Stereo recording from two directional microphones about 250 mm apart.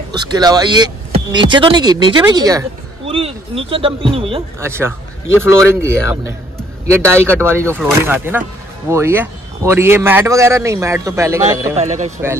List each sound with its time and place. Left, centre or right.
0.1 s speech: centre
4.6 s speech: centre
11.7 s a man's voice: right